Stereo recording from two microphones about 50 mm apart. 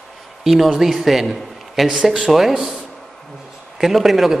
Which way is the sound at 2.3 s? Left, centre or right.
Centre.